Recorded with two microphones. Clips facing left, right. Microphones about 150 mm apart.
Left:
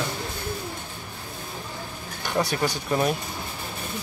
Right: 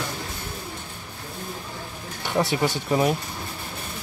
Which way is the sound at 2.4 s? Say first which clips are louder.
Right 2 dB; 20° right (ahead or behind).